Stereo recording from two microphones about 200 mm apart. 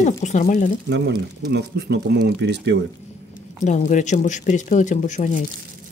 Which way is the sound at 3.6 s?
35° left (ahead or behind).